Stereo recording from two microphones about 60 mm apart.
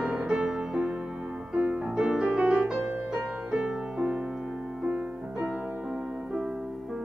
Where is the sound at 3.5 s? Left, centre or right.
Centre.